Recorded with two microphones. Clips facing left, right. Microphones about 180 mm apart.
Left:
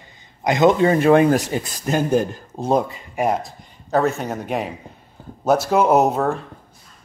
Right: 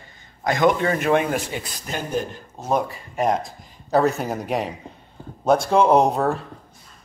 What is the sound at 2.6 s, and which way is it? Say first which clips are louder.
Speech: left 4 dB; 30° left (ahead or behind).